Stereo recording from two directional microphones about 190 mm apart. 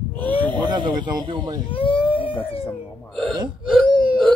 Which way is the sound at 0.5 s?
25° right (ahead or behind).